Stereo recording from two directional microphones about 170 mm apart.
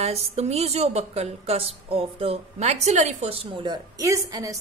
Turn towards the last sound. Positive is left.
turn(degrees=-20)  # may be behind; listen again after turning